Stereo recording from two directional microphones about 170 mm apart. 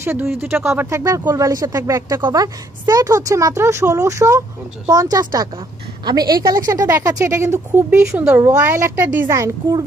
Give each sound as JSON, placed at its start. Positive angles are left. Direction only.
{"t": 0.0, "sound": "speech", "side_deg": -15}